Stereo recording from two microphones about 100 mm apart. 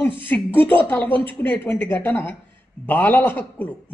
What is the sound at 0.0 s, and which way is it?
Speech, 20° left (ahead or behind).